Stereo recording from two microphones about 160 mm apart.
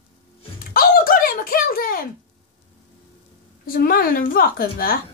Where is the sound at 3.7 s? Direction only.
65° left (ahead or behind).